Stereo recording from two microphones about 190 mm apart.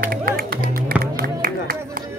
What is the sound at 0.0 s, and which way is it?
Music, 50° right (ahead or behind).